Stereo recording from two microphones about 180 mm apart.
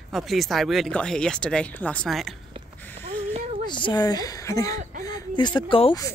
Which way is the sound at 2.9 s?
35° right (ahead or behind).